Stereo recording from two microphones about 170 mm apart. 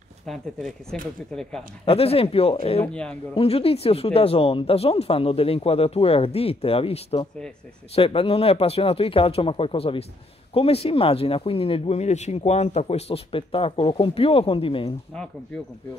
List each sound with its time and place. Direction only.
0.3 s speech: centre (ahead or behind)
1.9 s speech: 35° left (ahead or behind)
2.8 s speech: 5° left (ahead or behind)
3.3 s speech: 35° left (ahead or behind)